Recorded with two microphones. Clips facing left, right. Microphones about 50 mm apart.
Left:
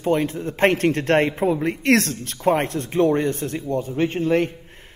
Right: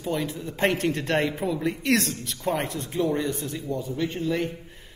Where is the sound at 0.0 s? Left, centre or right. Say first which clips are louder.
Left 7 dB; left.